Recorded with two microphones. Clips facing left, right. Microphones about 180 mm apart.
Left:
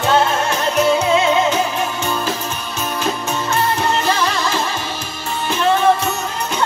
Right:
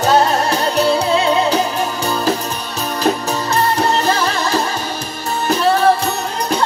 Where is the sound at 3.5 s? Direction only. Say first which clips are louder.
Right 3 dB; 35° right (ahead or behind).